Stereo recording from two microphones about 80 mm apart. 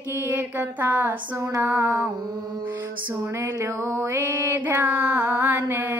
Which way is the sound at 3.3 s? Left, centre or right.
Right.